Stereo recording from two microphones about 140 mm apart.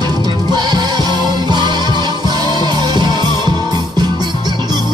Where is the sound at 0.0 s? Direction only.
30° right (ahead or behind).